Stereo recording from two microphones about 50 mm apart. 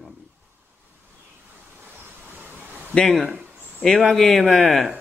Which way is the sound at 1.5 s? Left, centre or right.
Right.